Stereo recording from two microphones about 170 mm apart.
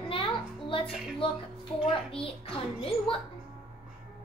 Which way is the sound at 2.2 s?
35° left (ahead or behind).